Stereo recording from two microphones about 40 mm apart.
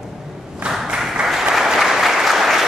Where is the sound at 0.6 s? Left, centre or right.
Right.